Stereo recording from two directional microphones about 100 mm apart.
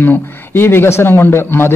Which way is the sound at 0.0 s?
20° left (ahead or behind).